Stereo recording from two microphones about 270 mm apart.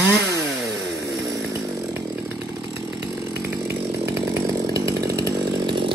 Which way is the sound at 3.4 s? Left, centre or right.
Centre.